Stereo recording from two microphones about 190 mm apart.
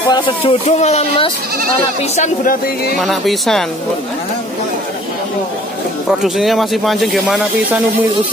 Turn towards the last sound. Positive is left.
turn(degrees=0)  # may be behind; listen again after turning